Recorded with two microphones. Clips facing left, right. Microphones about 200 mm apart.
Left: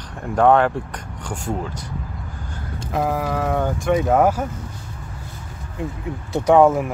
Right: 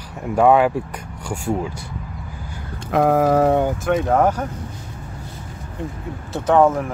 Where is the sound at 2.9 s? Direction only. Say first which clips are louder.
Right 7 dB; 55° right (ahead or behind).